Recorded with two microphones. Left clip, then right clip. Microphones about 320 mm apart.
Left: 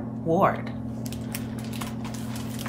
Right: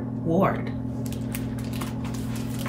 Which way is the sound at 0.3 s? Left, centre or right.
Centre.